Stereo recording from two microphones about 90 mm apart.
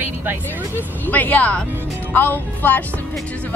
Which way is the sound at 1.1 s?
20° left (ahead or behind).